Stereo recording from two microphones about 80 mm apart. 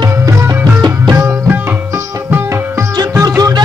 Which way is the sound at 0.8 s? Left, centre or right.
Right.